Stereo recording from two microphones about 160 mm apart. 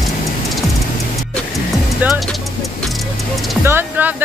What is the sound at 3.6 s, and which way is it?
Music, 15° right (ahead or behind).